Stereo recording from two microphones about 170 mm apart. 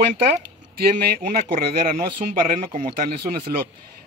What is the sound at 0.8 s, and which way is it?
Speech, 70° right (ahead or behind).